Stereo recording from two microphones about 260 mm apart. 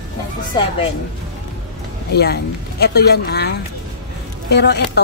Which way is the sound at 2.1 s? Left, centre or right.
Left.